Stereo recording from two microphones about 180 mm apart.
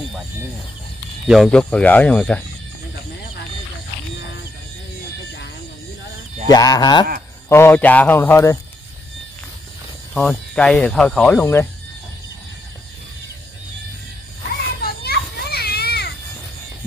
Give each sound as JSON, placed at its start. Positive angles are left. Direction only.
{"t": 1.2, "sound": "speech", "side_deg": 0}
{"t": 6.5, "sound": "a sound", "side_deg": 20}
{"t": 7.4, "sound": "speech", "side_deg": 15}
{"t": 10.1, "sound": "speech", "side_deg": 5}
{"t": 14.8, "sound": "children playing", "side_deg": 60}